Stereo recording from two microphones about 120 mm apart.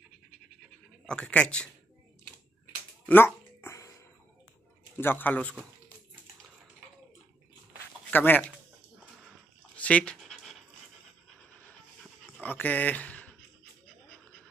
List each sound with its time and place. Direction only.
1.0 s speech: 10° left (ahead or behind)
3.1 s a sound: 20° left (ahead or behind)
4.9 s speech: 15° left (ahead or behind)
8.1 s speech: 15° left (ahead or behind)
9.8 s dog: 10° left (ahead or behind)
12.0 s dog: 15° left (ahead or behind)